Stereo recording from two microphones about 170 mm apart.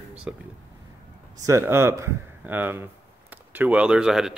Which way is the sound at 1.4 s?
15° right (ahead or behind).